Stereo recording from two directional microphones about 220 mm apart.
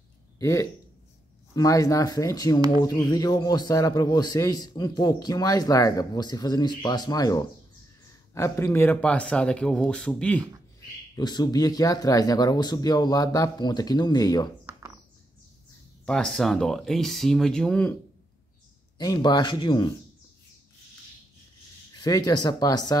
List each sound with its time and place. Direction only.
0.4 s a man's voice: 15° left (ahead or behind)
11.1 s a man's voice: 20° left (ahead or behind)
16.1 s speech: 5° left (ahead or behind)
18.9 s speech: 20° left (ahead or behind)
21.9 s a man's voice: 20° left (ahead or behind)